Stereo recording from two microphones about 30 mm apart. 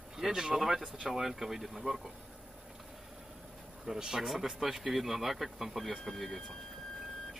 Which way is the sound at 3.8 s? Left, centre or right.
Centre.